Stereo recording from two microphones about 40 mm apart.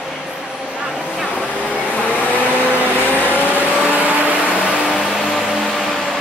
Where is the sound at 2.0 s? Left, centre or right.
Left.